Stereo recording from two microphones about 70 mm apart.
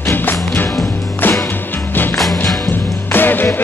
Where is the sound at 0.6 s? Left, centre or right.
Left.